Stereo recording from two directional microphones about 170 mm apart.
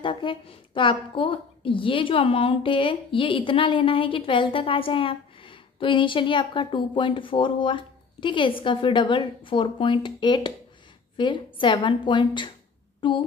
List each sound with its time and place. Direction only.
0.0 s a woman's voice: 30° left (ahead or behind)